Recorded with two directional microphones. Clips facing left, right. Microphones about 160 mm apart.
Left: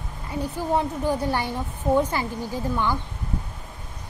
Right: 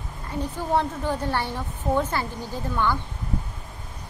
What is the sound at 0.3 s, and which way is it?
A woman's voice, 10° left (ahead or behind).